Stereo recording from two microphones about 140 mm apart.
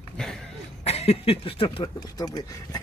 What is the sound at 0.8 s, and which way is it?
Speech, 45° left (ahead or behind).